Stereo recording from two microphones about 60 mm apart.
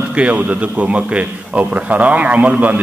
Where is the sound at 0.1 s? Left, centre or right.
Right.